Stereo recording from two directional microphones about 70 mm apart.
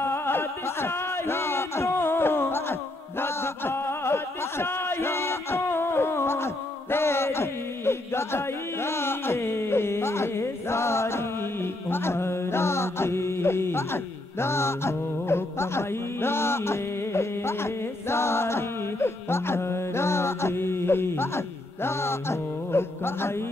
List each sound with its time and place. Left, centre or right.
0.0 s a sound: left
11.9 s mantra: left
14.4 s music: left
21.8 s mantra: left